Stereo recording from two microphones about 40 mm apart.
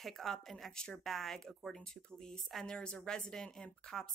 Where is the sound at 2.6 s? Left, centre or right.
Centre.